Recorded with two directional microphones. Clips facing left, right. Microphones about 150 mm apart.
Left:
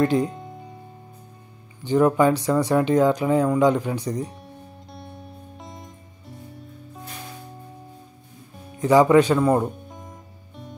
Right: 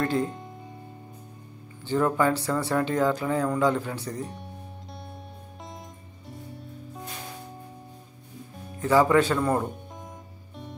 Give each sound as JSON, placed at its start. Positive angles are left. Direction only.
{"t": 0.0, "sound": "speech", "side_deg": 15}
{"t": 1.9, "sound": "speech", "side_deg": 15}
{"t": 4.2, "sound": "speech", "side_deg": 0}
{"t": 4.9, "sound": "music", "side_deg": 0}
{"t": 8.7, "sound": "speech", "side_deg": 15}
{"t": 9.4, "sound": "music", "side_deg": 0}